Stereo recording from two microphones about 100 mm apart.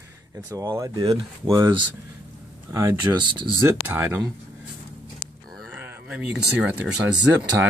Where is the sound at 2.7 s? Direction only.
30° right (ahead or behind).